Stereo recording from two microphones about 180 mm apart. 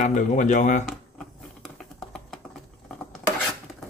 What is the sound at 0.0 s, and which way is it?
Speech, 40° left (ahead or behind).